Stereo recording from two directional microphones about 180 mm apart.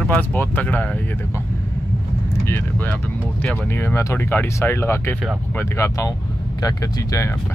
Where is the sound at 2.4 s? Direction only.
10° left (ahead or behind).